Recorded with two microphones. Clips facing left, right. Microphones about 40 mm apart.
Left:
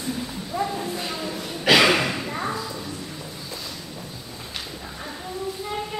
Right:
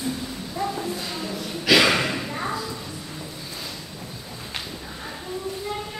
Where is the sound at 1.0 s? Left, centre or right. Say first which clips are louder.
Left 1 dB; left.